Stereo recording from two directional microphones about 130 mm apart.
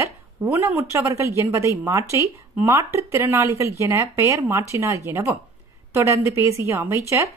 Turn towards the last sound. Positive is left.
turn(degrees=-20)  # may be behind; listen again after turning